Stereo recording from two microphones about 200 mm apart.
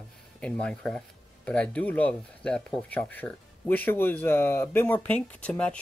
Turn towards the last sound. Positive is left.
turn(degrees=5)  # may be behind; listen again after turning